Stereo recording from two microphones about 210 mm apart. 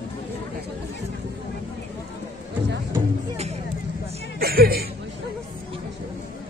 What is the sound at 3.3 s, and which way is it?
Speech, 30° right (ahead or behind).